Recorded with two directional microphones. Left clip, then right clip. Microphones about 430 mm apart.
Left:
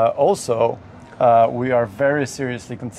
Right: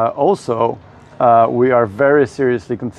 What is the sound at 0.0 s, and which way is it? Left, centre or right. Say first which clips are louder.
A man's voice: right 1 dB; right.